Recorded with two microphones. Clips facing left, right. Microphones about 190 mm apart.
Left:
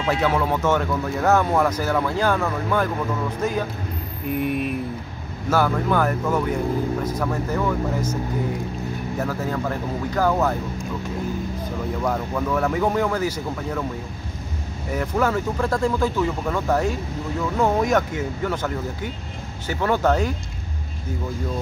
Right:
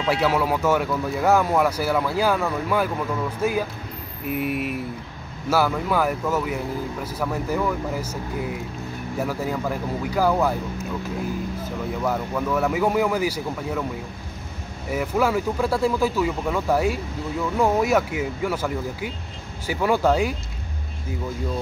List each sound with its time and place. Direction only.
0.0 s speech: 10° right (ahead or behind)
4.3 s mantra: 5° right (ahead or behind)
5.5 s speech: 5° right (ahead or behind)
9.2 s speech: 10° right (ahead or behind)
12.0 s speech: 5° right (ahead or behind)
14.9 s speech: 10° right (ahead or behind)